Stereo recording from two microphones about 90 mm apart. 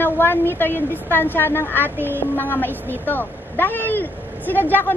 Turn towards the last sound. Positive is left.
turn(degrees=20)  # may be behind; listen again after turning